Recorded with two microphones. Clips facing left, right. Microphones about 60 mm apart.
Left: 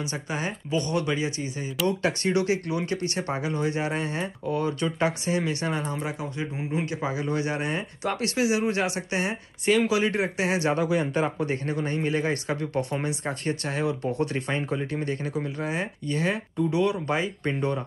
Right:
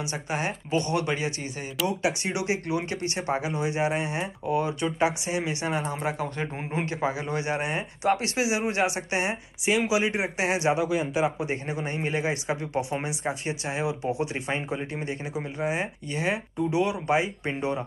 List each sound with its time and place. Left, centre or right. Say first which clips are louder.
0.0 s speech: right 1 dB; right
1.9 s speech: left 3 dB; centre
6.3 s speech: left 1 dB; right; by 10.8 s centre
10.8 s speech: left 1 dB; centre
11.4 s speech: left 2 dB; centre